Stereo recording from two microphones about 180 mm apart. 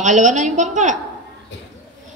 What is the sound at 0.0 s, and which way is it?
Speech, 40° right (ahead or behind).